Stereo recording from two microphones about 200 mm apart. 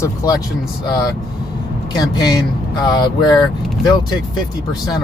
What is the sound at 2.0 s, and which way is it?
Speech, 20° left (ahead or behind).